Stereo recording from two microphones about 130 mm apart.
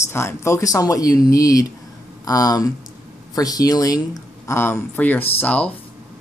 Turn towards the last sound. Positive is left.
turn(degrees=10)  # may be behind; listen again after turning